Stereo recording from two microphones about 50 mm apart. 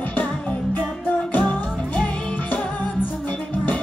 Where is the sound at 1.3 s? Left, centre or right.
Left.